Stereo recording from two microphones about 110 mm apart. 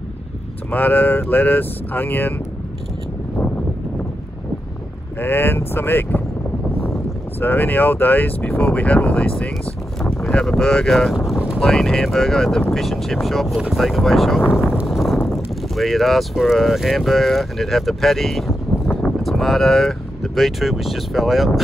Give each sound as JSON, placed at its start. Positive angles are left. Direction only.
{"t": 0.7, "sound": "speech", "side_deg": 15}
{"t": 5.2, "sound": "speech", "side_deg": 20}
{"t": 14.9, "sound": "a sound", "side_deg": 0}
{"t": 15.2, "sound": "speech", "side_deg": 0}